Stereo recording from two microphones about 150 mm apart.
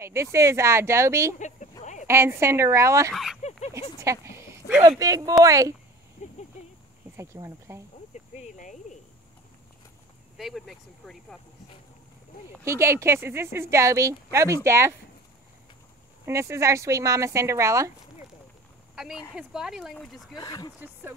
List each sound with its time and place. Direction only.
0.0 s speech: 20° right (ahead or behind)
3.1 s speech: centre (ahead or behind)
4.3 s a sound: 10° right (ahead or behind)
4.8 s speech: 20° right (ahead or behind)
6.2 s a sound: 55° left (ahead or behind)
7.2 s speech: 20° right (ahead or behind)
8.1 s cricket: 55° left (ahead or behind)
10.3 s speech: centre (ahead or behind)
12.6 s speech: 20° right (ahead or behind)
16.3 s speech: 20° right (ahead or behind)
19.3 s speech: 5° right (ahead or behind)
20.3 s speech: 25° left (ahead or behind)